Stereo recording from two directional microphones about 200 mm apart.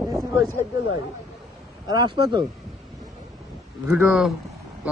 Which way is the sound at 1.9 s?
20° right (ahead or behind).